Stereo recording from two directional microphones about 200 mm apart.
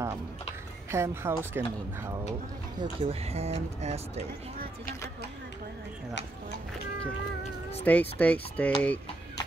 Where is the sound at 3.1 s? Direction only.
30° right (ahead or behind).